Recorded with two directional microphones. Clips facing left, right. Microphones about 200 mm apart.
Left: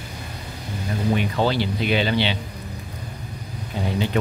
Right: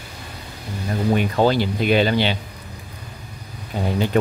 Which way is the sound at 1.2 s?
45° right (ahead or behind).